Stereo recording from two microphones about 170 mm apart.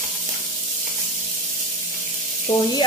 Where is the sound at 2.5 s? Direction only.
35° left (ahead or behind).